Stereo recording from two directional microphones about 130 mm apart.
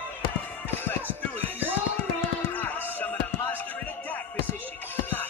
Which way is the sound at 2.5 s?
15° left (ahead or behind).